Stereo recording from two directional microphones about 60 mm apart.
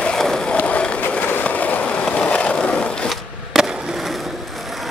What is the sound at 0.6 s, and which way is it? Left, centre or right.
Skateboard, left.